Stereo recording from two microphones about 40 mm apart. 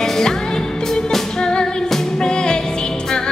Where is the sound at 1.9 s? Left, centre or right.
Centre.